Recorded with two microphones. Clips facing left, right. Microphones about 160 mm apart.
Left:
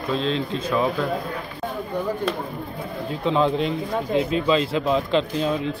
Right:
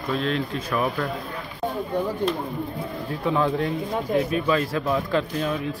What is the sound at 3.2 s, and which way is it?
Speech, 25° left (ahead or behind).